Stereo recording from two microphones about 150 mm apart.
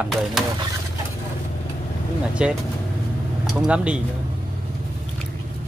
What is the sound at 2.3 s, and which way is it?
Speech, 5° right (ahead or behind).